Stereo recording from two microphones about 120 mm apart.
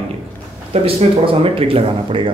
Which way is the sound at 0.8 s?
50° right (ahead or behind).